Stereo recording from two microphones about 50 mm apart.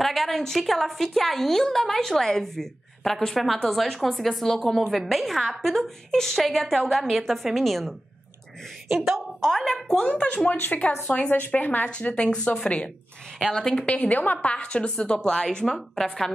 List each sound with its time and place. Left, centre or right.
0.0 s a woman's voice: centre
8.9 s a woman's voice: centre
9.4 s a woman's voice: centre
10.5 s a woman's voice: left; by 13.9 s centre
13.9 s a woman's voice: left
14.5 s a woman's voice: left